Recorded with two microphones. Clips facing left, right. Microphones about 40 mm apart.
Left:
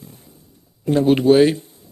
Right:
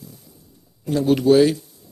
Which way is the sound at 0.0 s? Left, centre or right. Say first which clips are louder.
Even; left.